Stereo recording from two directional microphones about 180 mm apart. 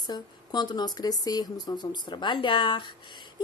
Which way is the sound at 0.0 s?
25° left (ahead or behind).